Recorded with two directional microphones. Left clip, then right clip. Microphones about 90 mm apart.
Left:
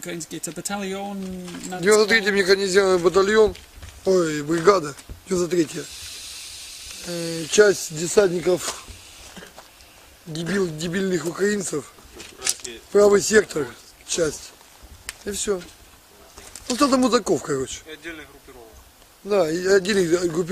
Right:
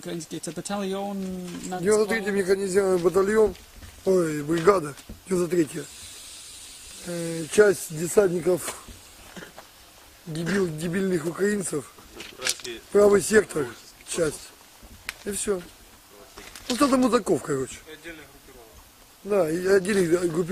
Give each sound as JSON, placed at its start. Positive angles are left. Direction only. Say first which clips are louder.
{"t": 0.0, "sound": "a man's voice", "louder": "left 2 dB", "side_deg": 30}
{"t": 1.4, "sound": "a man's voice", "louder": "left 5 dB", "side_deg": 20}
{"t": 3.3, "sound": "speech", "louder": "left 4 dB", "side_deg": 5}
{"t": 7.1, "sound": "speech", "louder": "left 4 dB", "side_deg": 5}
{"t": 10.6, "sound": "speech", "louder": "left 4 dB", "side_deg": 0}
{"t": 11.3, "sound": "a sound", "louder": "left 3 dB", "side_deg": 0}
{"t": 12.9, "sound": "speech", "louder": "left 3 dB", "side_deg": 0}
{"t": 16.6, "sound": "speech", "louder": "left 2 dB", "side_deg": 0}
{"t": 19.2, "sound": "speech", "louder": "left 3 dB", "side_deg": 0}